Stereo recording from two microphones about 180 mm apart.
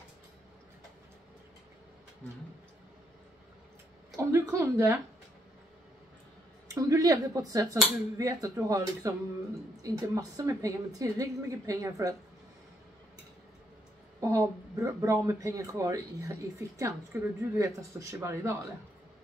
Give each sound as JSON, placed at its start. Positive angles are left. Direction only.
{"t": 4.2, "sound": "speech", "side_deg": -15}
{"t": 6.7, "sound": "speech", "side_deg": -20}
{"t": 14.2, "sound": "speech", "side_deg": -15}